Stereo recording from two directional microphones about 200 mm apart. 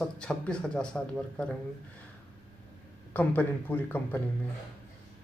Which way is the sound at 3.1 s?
10° left (ahead or behind).